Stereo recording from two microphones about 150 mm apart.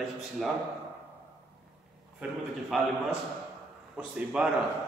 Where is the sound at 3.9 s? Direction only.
5° right (ahead or behind).